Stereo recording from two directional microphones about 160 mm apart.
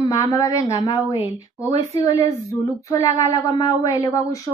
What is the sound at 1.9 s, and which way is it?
Speech, 20° left (ahead or behind).